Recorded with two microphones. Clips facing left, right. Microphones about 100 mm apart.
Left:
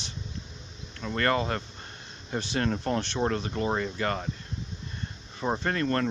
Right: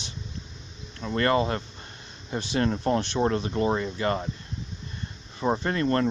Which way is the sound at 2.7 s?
20° right (ahead or behind).